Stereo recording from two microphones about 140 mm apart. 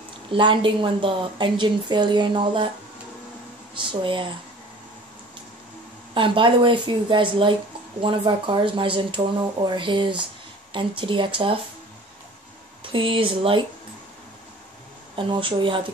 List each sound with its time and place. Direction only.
0.3 s a woman's voice: 35° right (ahead or behind)
3.7 s a woman's voice: 35° right (ahead or behind)
6.1 s a woman's voice: 35° right (ahead or behind)
12.8 s a woman's voice: 40° right (ahead or behind)
15.1 s a woman's voice: 40° right (ahead or behind)